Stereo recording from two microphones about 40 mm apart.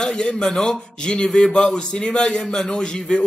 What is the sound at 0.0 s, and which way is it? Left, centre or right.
Speech, centre.